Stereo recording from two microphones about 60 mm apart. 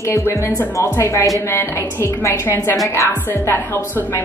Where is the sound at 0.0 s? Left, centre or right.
Left.